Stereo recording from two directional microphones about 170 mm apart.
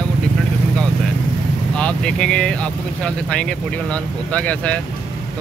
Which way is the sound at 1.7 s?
5° left (ahead or behind).